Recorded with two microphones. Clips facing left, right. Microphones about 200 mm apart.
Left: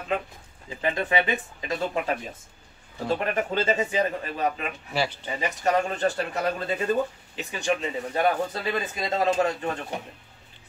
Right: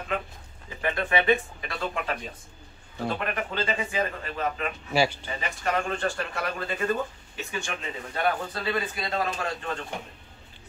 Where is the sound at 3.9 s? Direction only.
20° left (ahead or behind).